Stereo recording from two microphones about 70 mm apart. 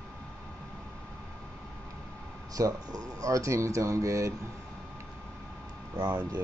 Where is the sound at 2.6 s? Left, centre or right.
Right.